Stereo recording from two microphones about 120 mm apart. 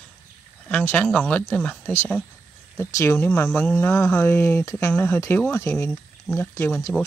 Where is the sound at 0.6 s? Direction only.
15° left (ahead or behind).